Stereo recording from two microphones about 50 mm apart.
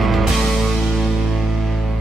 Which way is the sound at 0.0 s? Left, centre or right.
Centre.